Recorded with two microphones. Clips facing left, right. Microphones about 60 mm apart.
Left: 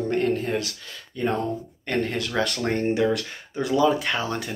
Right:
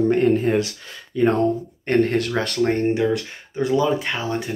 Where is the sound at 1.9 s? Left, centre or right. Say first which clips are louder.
Right 7 dB; right.